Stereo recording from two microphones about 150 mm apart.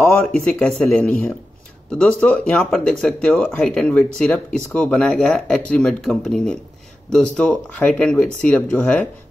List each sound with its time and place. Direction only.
0.2 s speech: 5° left (ahead or behind)